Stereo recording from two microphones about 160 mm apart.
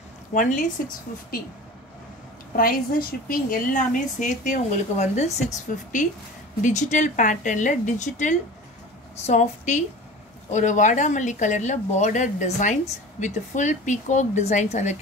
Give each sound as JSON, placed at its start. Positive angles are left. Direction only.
{"t": 0.3, "sound": "speech", "side_deg": 55}
{"t": 2.5, "sound": "a woman's voice", "side_deg": 65}